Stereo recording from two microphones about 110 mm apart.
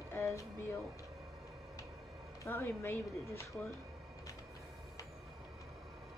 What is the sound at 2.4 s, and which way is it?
Speech, 25° left (ahead or behind).